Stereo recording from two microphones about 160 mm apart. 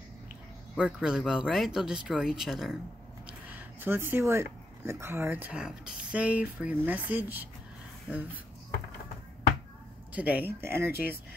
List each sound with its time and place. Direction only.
0.7 s speech: 5° right (ahead or behind)
10.1 s speech: 10° right (ahead or behind)
10.9 s speech: 70° left (ahead or behind)